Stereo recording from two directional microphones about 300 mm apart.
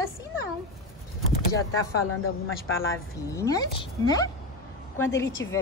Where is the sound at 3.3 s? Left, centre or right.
Centre.